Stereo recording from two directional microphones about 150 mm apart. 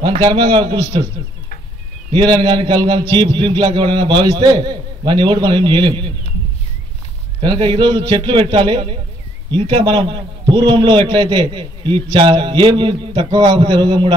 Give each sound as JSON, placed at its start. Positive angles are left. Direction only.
{"t": 0.0, "sound": "a man's voice", "side_deg": -30}
{"t": 2.1, "sound": "a man's voice", "side_deg": -30}
{"t": 7.3, "sound": "a man's voice", "side_deg": -35}